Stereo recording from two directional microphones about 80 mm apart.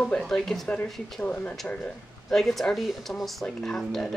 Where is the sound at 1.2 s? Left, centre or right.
Centre.